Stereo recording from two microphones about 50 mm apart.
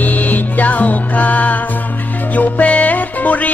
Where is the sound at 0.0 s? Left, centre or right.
Left.